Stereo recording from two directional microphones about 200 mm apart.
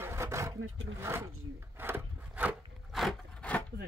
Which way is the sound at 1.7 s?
10° right (ahead or behind).